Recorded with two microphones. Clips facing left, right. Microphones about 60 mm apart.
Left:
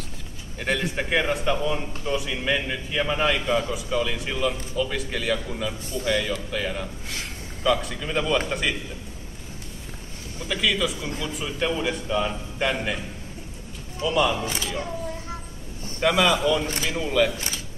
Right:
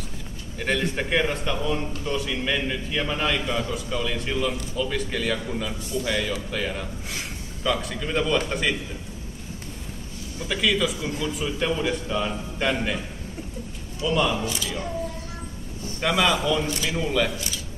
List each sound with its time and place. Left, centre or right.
0.6 s a man's voice: centre
10.5 s a man's voice: centre
14.0 s a man's voice: centre
14.4 s speech: left
16.0 s a man's voice: centre
16.6 s speech: left
16.9 s a man's voice: centre